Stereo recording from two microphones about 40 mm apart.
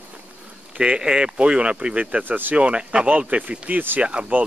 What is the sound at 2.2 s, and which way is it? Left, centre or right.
Speech, right.